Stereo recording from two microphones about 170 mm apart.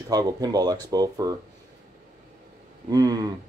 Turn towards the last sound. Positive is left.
turn(degrees=-20)  # may be behind; listen again after turning